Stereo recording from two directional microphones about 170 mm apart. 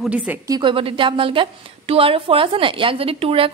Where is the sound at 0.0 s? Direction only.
5° right (ahead or behind).